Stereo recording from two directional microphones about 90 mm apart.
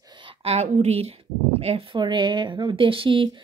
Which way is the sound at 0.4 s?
90° right.